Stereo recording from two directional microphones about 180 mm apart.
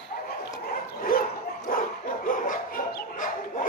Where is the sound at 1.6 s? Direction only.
50° left (ahead or behind).